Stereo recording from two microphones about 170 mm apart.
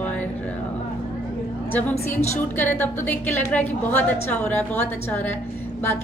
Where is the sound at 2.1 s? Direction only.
10° left (ahead or behind).